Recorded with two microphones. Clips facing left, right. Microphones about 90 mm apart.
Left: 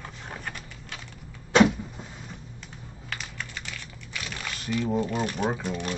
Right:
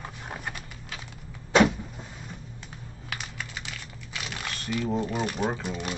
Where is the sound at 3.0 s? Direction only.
10° right (ahead or behind).